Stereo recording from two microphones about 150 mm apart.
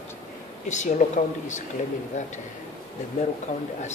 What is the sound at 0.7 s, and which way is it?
Speech, 50° left (ahead or behind).